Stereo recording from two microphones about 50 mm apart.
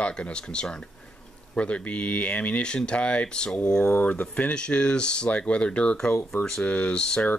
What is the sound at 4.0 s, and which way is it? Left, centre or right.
Speech, left.